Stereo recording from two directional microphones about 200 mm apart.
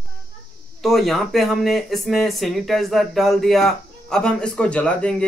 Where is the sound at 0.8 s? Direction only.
Centre (ahead or behind).